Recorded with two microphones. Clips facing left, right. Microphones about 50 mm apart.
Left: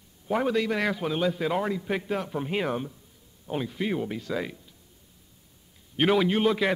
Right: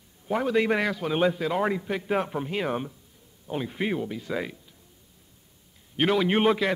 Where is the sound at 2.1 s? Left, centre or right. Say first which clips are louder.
Right 4 dB; right.